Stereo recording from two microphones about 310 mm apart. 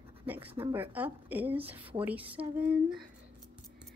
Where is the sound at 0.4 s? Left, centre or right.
Centre.